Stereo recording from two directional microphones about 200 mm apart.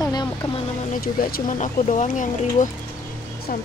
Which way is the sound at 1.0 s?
50° left (ahead or behind).